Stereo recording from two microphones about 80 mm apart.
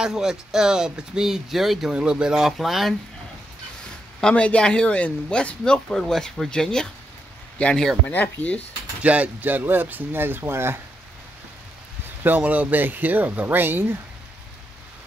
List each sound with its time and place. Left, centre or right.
0.0 s speech: centre
4.2 s speech: centre
8.1 s speech: centre
9.0 s speech: centre
12.2 s speech: right